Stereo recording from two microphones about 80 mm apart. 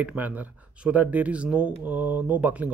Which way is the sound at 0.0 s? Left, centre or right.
Centre.